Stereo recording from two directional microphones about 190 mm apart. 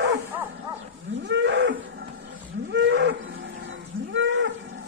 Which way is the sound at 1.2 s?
65° right (ahead or behind).